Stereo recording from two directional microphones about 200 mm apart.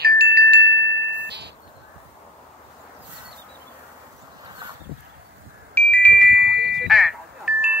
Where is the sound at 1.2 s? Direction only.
55° right (ahead or behind).